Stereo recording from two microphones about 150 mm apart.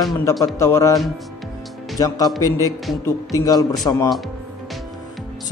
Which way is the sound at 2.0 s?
25° left (ahead or behind).